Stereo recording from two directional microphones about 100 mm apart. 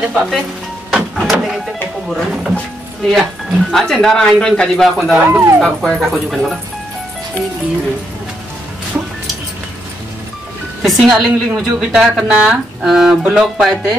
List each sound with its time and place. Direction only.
0.0 s a woman's voice: 5° right (ahead or behind)
5.2 s speech: 25° right (ahead or behind)
5.6 s a woman's voice: centre (ahead or behind)
10.8 s a woman's voice: centre (ahead or behind)